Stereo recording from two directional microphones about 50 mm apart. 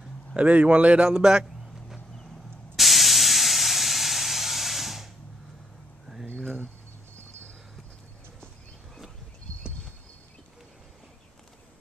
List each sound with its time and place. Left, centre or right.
0.4 s a man's voice: right; by 2.0 s centre
2.7 s hiss: centre
6.3 s a sound: centre